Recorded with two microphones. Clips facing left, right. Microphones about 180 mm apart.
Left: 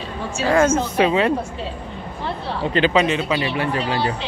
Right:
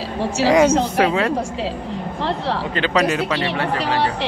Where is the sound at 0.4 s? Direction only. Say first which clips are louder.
Right 4 dB; 80° right.